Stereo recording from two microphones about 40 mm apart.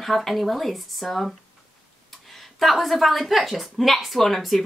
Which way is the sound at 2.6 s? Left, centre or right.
Centre.